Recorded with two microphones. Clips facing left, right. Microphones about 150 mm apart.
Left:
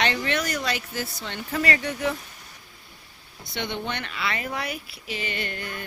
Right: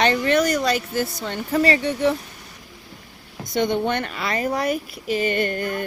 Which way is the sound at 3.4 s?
45° right (ahead or behind).